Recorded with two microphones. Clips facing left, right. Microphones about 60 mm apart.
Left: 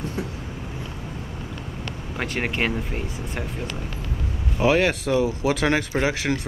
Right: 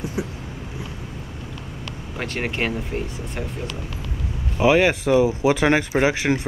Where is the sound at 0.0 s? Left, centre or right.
Centre.